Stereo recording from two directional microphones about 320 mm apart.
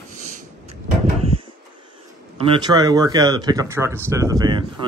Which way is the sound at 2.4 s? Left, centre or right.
Centre.